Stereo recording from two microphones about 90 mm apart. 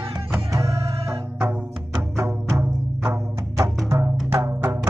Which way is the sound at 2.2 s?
30° right (ahead or behind).